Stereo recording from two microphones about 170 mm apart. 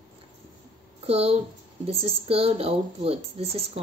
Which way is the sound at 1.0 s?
35° right (ahead or behind).